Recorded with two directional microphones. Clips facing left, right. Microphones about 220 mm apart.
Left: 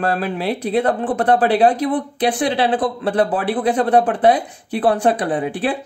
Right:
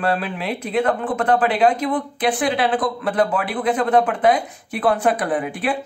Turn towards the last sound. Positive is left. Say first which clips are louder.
# left 2 dB
turn(degrees=30)  # may be behind; listen again after turning